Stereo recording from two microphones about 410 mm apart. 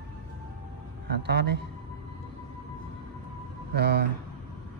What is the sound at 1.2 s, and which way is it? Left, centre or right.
Mantra, right.